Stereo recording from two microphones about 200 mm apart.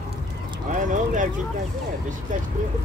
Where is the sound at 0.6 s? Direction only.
40° right (ahead or behind).